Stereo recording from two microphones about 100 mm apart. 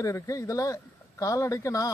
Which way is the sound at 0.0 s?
35° left (ahead or behind).